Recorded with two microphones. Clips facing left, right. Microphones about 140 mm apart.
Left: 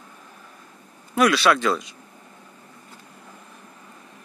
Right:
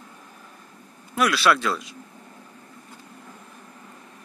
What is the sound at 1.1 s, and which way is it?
Speech, centre (ahead or behind).